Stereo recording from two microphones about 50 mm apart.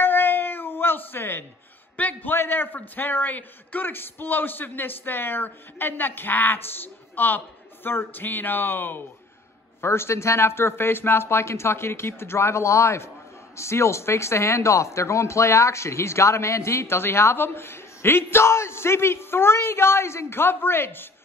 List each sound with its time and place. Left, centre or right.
0.0 s cat: left
2.0 s a man's voice: left
2.3 s a man's voice: left
9.8 s speech: left